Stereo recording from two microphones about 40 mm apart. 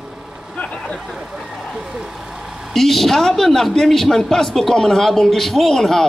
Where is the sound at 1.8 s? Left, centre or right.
Centre.